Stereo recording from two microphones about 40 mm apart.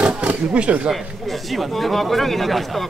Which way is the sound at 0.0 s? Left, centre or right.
Right.